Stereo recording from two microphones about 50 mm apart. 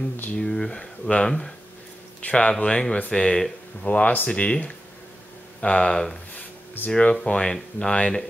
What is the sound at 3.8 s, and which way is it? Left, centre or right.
Speech, left.